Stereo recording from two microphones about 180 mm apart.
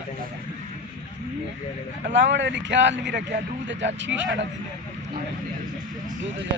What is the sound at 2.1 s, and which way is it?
A man's voice, 80° right.